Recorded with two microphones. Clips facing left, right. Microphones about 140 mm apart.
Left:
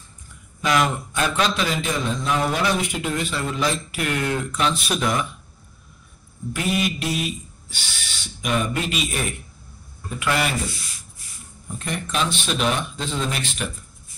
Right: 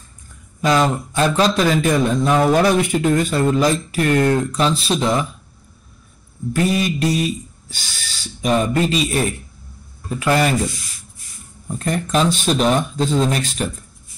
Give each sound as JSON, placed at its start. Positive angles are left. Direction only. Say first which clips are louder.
{"t": 0.7, "sound": "speech", "louder": "right 4 dB", "side_deg": -30}
{"t": 6.5, "sound": "speech", "louder": "right 5 dB", "side_deg": -35}
{"t": 11.6, "sound": "speech", "louder": "right 7 dB", "side_deg": -40}